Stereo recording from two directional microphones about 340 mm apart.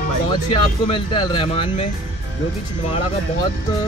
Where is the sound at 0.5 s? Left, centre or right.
Centre.